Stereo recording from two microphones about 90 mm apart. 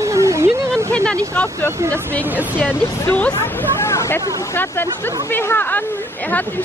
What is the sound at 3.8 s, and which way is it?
Speech, 30° left (ahead or behind).